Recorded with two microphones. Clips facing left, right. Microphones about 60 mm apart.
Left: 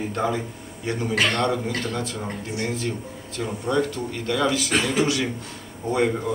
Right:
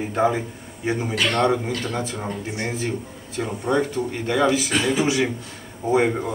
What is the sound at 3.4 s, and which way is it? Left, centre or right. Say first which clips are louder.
Speech: right 1 dB; centre.